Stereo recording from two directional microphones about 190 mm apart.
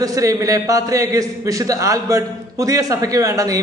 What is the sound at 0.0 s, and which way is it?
A man's voice, 20° right (ahead or behind).